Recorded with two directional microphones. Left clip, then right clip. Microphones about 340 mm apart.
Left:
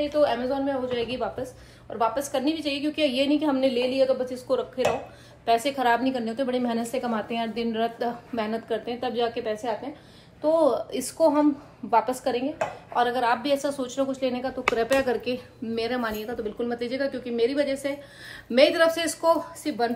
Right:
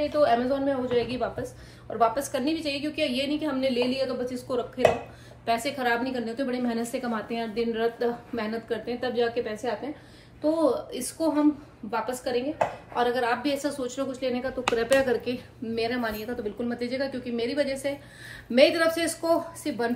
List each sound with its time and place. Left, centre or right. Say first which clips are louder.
0.0 s a woman's voice: even; centre
10.9 s a woman's voice: left 6 dB; centre